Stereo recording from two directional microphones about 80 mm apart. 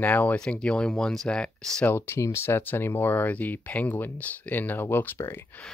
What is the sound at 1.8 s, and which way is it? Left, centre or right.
Speech, left.